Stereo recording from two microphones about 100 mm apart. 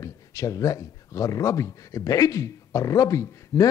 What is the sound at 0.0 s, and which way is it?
Speech, 35° left (ahead or behind).